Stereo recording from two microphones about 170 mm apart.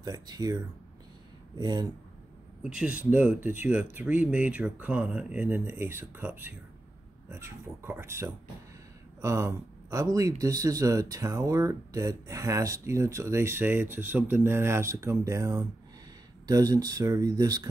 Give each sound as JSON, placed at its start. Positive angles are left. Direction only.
{"t": 0.0, "sound": "speech", "side_deg": -20}
{"t": 1.6, "sound": "speech", "side_deg": -25}
{"t": 2.6, "sound": "speech", "side_deg": -5}